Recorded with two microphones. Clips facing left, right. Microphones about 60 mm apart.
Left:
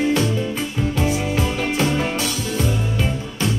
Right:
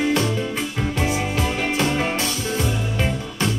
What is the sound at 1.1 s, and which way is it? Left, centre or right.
Music, right.